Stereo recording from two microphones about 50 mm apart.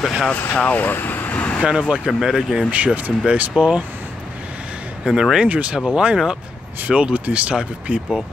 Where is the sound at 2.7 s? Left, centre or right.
Right.